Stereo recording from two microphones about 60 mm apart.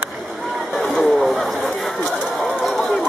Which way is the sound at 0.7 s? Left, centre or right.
Centre.